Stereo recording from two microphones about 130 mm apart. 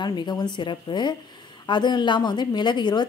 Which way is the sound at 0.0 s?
35° left (ahead or behind).